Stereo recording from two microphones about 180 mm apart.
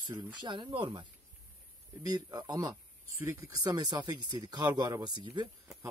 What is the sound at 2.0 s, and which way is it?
A man's voice, 20° right (ahead or behind).